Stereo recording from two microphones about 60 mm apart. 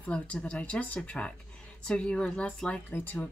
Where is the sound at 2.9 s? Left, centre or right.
Left.